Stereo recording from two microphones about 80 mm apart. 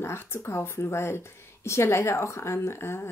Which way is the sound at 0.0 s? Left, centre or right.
Left.